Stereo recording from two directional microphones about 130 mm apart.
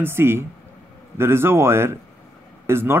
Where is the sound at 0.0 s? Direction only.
20° right (ahead or behind).